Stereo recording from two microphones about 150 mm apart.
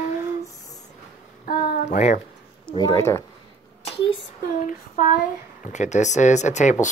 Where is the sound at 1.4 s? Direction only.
75° left (ahead or behind).